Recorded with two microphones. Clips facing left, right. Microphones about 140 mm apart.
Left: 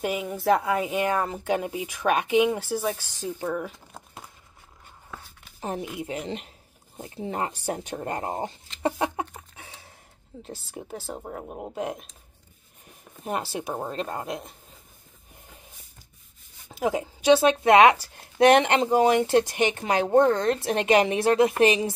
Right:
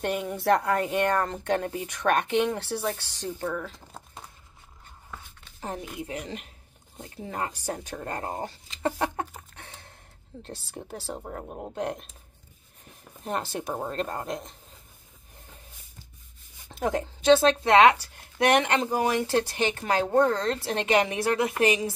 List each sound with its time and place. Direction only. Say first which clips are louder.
0.0 s a woman's voice: left 1 dB; centre (ahead or behind)
5.6 s speech: left 3 dB; 20° left (ahead or behind)
9.6 s gasp: even; 5° left (ahead or behind)
10.4 s a woman's voice: left 2 dB; centre (ahead or behind)
13.2 s a woman's voice: left 1 dB; 5° left (ahead or behind)
16.6 s speech: left 2 dB; 5° left (ahead or behind); by 21.9 s 25° left (ahead or behind)